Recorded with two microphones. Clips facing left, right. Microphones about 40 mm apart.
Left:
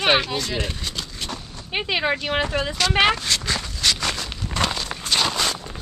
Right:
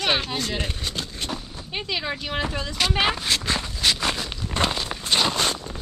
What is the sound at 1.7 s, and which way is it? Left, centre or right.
Speech, left.